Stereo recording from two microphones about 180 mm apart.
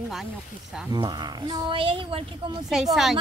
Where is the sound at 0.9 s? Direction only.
25° right (ahead or behind).